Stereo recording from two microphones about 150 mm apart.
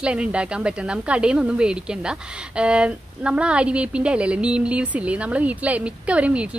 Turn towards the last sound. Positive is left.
turn(degrees=-10)  # may be behind; listen again after turning